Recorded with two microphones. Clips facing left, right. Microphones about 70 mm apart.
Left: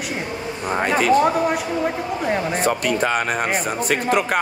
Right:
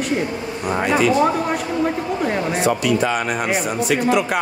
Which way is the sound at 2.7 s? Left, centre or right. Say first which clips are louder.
Right 2 dB; left.